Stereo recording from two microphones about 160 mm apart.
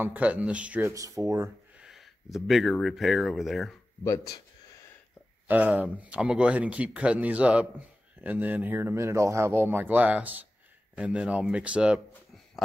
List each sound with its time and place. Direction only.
0.0 s speech: 10° right (ahead or behind)
1.8 s speech: centre (ahead or behind)
4.0 s speech: 20° left (ahead or behind)
5.5 s speech: 10° right (ahead or behind)